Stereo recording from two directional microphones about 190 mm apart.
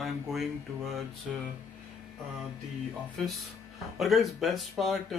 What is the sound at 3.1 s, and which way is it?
Speech, centre (ahead or behind).